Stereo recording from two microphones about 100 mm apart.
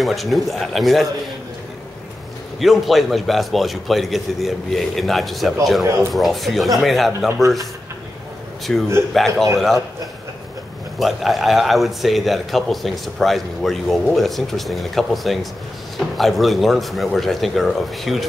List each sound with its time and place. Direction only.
0.0 s a man's voice: centre (ahead or behind)
2.6 s a man's voice: centre (ahead or behind)
7.1 s speech: 20° right (ahead or behind)
8.7 s a man's voice: 10° left (ahead or behind)
11.0 s a man's voice: centre (ahead or behind)